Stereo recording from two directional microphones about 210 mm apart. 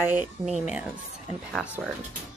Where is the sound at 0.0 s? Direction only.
10° right (ahead or behind).